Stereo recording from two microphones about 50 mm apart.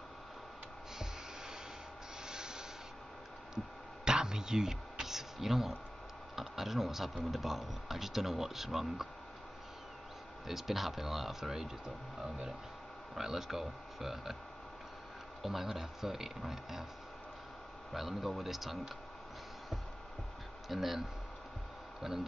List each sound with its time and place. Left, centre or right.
2.2 s rub: centre
4.0 s a sound: centre
6.3 s speech: centre
10.4 s speech: centre
15.4 s speech: centre
17.9 s speech: centre
20.6 s speech: centre
22.0 s speech: centre